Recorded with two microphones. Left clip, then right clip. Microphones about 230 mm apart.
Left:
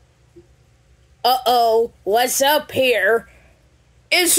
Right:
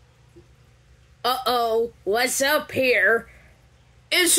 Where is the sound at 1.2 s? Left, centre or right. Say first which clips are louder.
Left 7 dB; centre.